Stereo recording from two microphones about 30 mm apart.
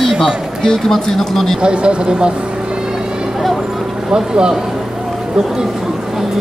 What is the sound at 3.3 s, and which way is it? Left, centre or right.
Vehicle, centre.